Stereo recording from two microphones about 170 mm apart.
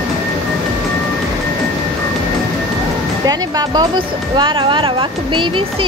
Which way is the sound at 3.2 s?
20° right (ahead or behind).